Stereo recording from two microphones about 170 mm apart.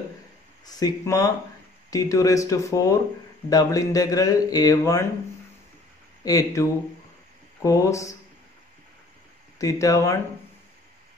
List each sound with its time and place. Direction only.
0.7 s speech: 20° left (ahead or behind)
6.2 s speech: 20° left (ahead or behind)
9.6 s speech: 20° left (ahead or behind)